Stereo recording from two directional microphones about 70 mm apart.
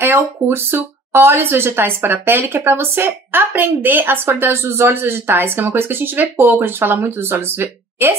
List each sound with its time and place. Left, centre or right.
0.0 s speech: right